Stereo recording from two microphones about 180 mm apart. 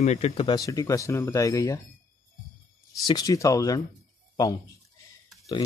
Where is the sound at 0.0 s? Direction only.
40° left (ahead or behind).